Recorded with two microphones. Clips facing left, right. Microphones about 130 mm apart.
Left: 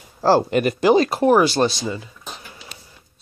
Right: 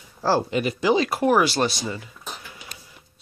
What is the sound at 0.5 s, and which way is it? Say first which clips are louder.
Speech: left 5 dB; 55° left (ahead or behind).